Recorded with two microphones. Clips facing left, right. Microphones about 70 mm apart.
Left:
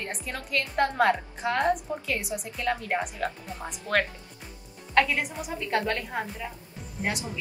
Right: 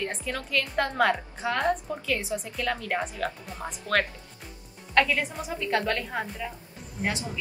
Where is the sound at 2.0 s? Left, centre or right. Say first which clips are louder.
Right 2 dB; centre.